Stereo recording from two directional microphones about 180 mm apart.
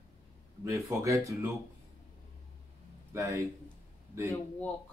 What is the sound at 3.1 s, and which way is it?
Speech, 15° right (ahead or behind).